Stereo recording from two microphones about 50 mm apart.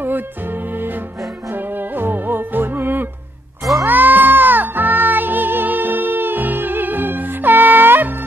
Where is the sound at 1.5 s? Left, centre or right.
Right.